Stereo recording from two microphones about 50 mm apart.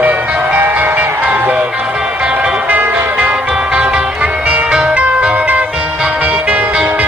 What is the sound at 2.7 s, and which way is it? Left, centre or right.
Music, right.